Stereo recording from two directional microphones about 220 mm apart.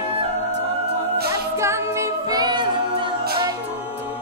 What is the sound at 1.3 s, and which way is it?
A capella, 10° right (ahead or behind).